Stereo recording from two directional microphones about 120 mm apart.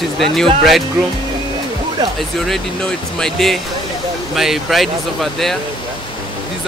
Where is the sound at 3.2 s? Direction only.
Centre (ahead or behind).